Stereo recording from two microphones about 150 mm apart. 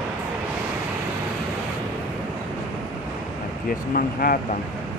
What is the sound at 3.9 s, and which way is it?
Speech, 70° left (ahead or behind).